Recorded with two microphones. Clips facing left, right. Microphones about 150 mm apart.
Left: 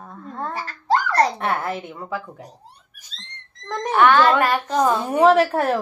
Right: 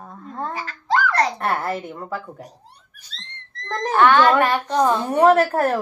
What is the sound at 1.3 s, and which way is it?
Speech, centre (ahead or behind).